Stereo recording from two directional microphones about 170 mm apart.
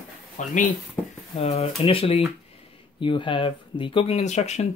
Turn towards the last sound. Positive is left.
turn(degrees=40)  # may be behind; listen again after turning